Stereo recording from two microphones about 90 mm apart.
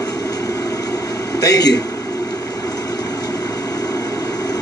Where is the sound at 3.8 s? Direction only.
45° left (ahead or behind).